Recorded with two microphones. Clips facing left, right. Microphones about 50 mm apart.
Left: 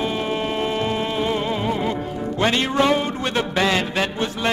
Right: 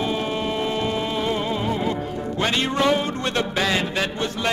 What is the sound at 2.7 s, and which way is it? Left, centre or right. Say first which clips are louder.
Music: left 2 dB; centre.